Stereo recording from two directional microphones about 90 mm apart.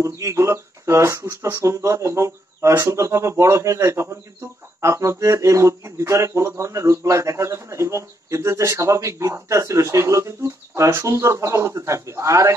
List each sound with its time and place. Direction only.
0.0 s speech: 35° right (ahead or behind)